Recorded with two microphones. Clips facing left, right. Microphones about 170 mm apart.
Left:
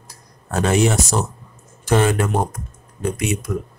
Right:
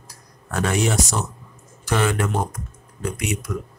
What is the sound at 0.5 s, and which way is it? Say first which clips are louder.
Speech: left 4 dB; 30° left (ahead or behind).